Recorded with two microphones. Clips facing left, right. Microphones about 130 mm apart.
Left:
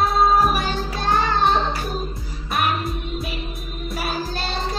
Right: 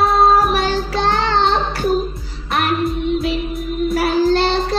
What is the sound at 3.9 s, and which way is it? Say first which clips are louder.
Child singing: right 12 dB; 75° right (ahead or behind).